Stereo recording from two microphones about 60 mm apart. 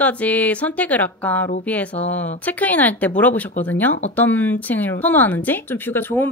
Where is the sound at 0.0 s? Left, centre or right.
Left.